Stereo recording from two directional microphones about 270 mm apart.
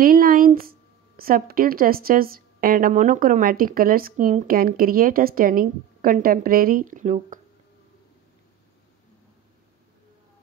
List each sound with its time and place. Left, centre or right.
0.0 s speech: right